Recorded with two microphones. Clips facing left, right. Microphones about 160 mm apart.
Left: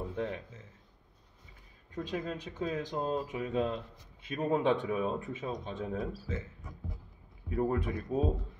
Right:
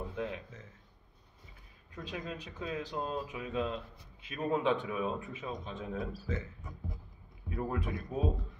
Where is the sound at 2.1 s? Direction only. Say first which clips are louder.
Left 4 dB; 40° left (ahead or behind).